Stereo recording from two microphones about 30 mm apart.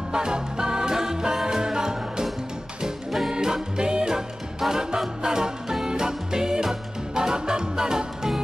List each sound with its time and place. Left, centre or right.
0.1 s music: right
3.3 s music: centre